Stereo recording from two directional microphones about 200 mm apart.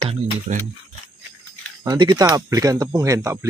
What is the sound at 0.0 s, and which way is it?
Speech, 30° right (ahead or behind).